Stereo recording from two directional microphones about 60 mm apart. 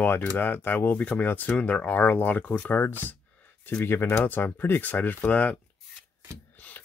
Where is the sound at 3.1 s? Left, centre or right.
Left.